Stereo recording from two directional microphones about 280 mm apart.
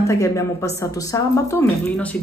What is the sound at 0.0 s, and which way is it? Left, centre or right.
A woman's voice, centre.